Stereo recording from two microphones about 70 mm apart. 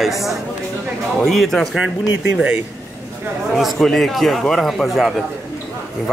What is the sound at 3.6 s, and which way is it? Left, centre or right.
Speech, centre.